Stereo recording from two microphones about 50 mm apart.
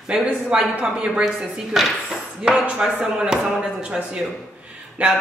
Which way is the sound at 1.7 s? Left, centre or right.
Centre.